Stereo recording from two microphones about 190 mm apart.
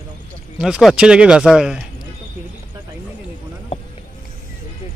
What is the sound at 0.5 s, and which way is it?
Speech, 5° right (ahead or behind).